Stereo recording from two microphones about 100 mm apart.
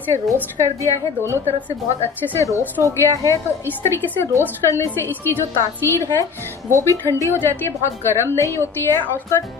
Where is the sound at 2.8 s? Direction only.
35° right (ahead or behind).